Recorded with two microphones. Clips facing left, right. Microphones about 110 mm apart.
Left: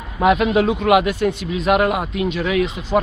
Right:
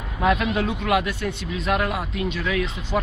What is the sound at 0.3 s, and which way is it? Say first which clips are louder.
Speech: left 6 dB; 45° left (ahead or behind).